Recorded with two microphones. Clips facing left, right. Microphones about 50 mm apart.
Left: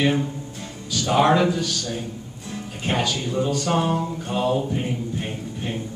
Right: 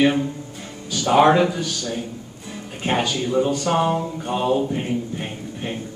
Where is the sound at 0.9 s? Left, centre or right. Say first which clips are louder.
Right 3 dB; centre.